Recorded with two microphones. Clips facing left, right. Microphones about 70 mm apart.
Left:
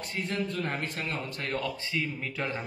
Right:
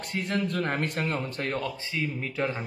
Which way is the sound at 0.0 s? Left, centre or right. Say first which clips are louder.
Right 3 dB; right.